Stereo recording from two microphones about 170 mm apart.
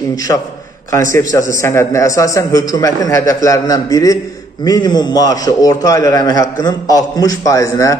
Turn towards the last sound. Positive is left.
turn(degrees=20)  # may be behind; listen again after turning